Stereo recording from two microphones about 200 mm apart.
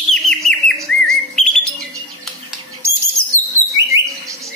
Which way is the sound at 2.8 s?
15° right (ahead or behind).